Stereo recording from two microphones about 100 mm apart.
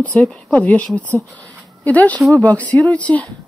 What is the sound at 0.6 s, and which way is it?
Speech, 15° left (ahead or behind).